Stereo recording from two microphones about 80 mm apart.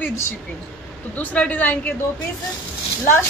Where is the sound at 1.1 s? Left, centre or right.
Centre.